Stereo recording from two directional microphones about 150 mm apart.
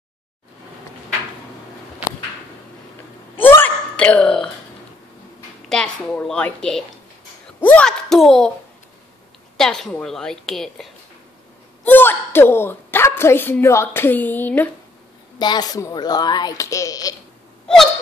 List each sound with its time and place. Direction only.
3.3 s hiccup: 10° left (ahead or behind)
5.7 s a woman's voice: 5° left (ahead or behind)
9.6 s a woman's voice: 5° left (ahead or behind)
11.8 s a woman's voice: 15° left (ahead or behind)
15.3 s a woman's voice: 30° left (ahead or behind)